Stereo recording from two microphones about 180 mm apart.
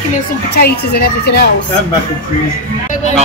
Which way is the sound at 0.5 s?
60° left (ahead or behind).